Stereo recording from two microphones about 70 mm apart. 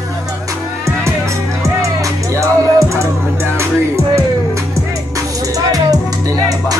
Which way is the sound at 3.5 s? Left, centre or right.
Right.